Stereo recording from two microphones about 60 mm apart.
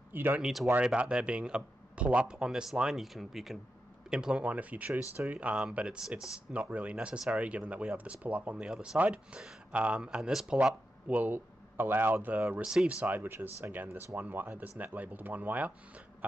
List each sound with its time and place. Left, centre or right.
0.1 s speech: right
0.4 s speech: centre
0.9 s speech: centre
4.1 s speech: centre
6.5 s speech: right
11.1 s speech: right